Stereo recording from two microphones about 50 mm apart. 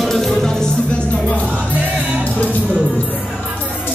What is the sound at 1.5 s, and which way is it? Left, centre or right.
Music, right.